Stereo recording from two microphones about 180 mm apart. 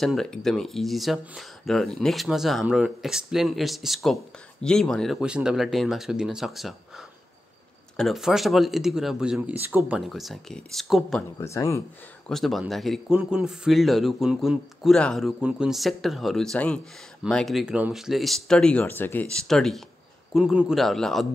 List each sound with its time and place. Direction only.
0.0 s a man's voice: centre (ahead or behind)
8.0 s a man's voice: centre (ahead or behind)
11.3 s speech: 15° left (ahead or behind)
12.3 s a man's voice: centre (ahead or behind)